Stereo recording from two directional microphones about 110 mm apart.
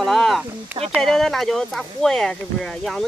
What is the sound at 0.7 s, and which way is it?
Speech, 20° right (ahead or behind).